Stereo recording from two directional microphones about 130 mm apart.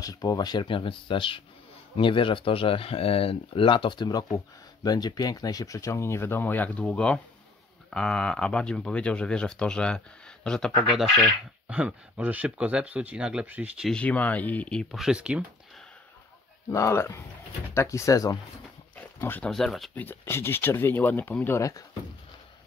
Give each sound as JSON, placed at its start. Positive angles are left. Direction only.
{"t": 0.0, "sound": "speech", "side_deg": 30}
{"t": 11.6, "sound": "speech", "side_deg": -10}
{"t": 13.8, "sound": "speech", "side_deg": 10}
{"t": 16.7, "sound": "speech", "side_deg": 20}
{"t": 18.9, "sound": "pig", "side_deg": 15}
{"t": 19.5, "sound": "speech", "side_deg": 0}
{"t": 20.0, "sound": "speech", "side_deg": 15}